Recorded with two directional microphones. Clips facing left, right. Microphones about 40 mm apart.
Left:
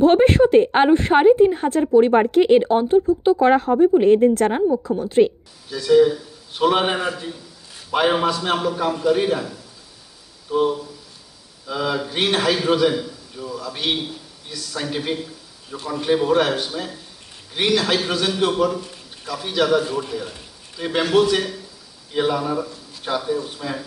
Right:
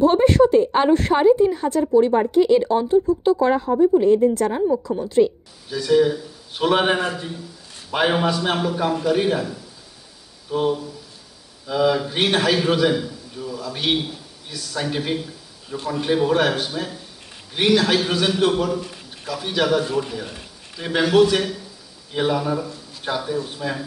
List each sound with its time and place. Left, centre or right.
0.0 s speech: left
0.8 s a woman's voice: centre
1.4 s speech: left
2.1 s speech: left
2.5 s speech: left
3.3 s speech: left
5.7 s a man's voice: centre
10.5 s a man's voice: centre